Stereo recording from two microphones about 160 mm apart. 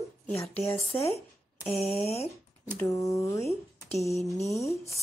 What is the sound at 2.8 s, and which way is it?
Speech, 20° left (ahead or behind).